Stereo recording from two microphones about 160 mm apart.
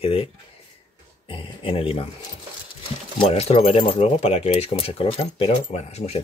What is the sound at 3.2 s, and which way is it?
Speech, 40° left (ahead or behind).